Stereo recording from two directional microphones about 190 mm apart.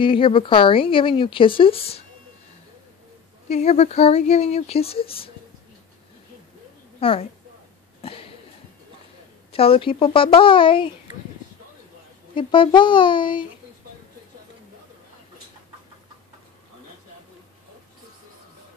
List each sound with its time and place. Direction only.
0.0 s a woman's voice: 25° left (ahead or behind)
3.4 s speech: 35° left (ahead or behind)
7.0 s speech: 30° left (ahead or behind)
8.0 s a sound: 30° left (ahead or behind)
9.5 s a woman's voice: 30° left (ahead or behind)
12.4 s a woman's voice: 25° left (ahead or behind)